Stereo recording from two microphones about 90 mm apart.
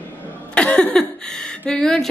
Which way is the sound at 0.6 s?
15° left (ahead or behind).